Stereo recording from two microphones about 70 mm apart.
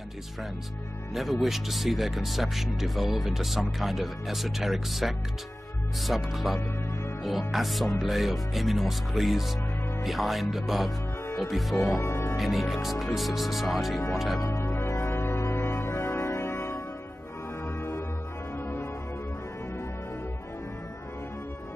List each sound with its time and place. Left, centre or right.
1.1 s speech: centre
12.0 s speech: left
12.4 s speech: centre
14.4 s music: left
14.7 s music: left